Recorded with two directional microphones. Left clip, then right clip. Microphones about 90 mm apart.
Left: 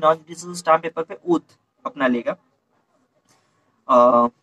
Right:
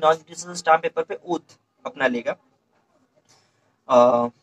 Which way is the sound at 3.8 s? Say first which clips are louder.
Left 2 dB; 15° right (ahead or behind).